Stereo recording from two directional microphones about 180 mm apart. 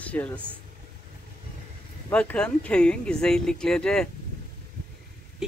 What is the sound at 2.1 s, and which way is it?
Speech, 5° left (ahead or behind).